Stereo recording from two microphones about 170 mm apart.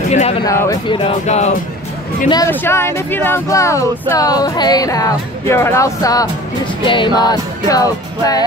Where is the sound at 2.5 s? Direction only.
15° left (ahead or behind).